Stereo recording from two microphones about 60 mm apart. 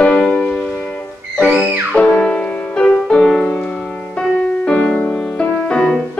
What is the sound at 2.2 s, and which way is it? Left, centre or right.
Music, centre.